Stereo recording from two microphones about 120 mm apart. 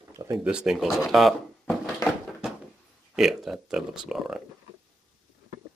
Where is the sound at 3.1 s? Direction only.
Centre (ahead or behind).